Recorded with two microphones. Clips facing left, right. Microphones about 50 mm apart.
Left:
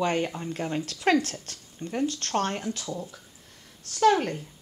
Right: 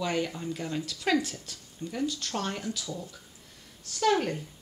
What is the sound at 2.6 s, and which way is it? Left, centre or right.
Speech, left.